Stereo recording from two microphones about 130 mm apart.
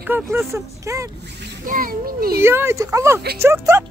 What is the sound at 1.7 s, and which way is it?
Speech, 90° right.